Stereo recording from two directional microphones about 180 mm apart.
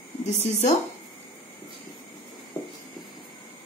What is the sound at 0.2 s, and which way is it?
Speech, 40° left (ahead or behind).